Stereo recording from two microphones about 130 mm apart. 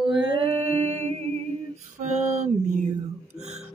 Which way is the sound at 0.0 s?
35° right (ahead or behind).